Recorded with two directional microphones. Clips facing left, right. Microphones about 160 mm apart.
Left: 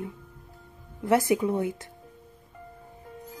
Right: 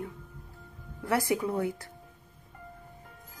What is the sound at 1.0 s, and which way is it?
Speech, 20° left (ahead or behind).